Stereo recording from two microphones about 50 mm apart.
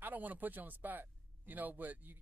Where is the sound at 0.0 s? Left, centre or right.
Right.